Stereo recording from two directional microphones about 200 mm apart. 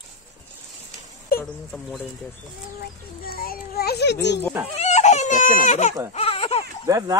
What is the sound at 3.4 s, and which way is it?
Speech, 50° left (ahead or behind).